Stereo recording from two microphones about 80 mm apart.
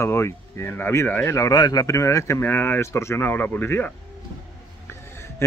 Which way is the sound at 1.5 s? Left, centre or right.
Left.